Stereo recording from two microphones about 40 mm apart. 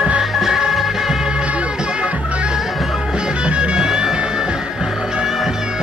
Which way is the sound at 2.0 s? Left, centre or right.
Right.